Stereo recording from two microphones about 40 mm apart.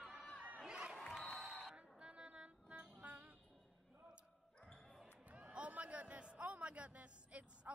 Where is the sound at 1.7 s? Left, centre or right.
Right.